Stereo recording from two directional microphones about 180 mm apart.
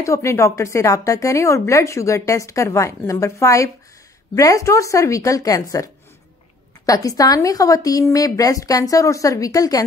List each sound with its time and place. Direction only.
0.0 s speech: 15° left (ahead or behind)
6.9 s speech: 20° left (ahead or behind)